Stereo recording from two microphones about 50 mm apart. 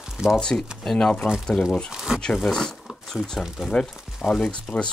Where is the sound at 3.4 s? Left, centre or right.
Centre.